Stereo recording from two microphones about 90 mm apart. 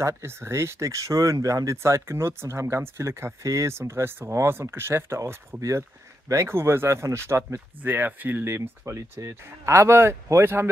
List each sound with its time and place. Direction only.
0.0 s speech: 30° right (ahead or behind)